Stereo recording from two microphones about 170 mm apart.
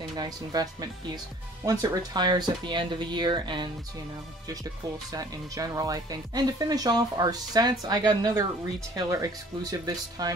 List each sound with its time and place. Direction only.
0.1 s speech: 25° right (ahead or behind)
5.1 s speech: 20° right (ahead or behind)